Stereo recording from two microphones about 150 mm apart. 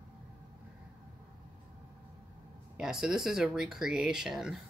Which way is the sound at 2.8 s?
5° right (ahead or behind).